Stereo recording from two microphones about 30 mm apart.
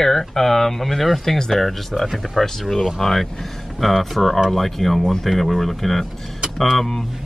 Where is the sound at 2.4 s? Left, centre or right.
Centre.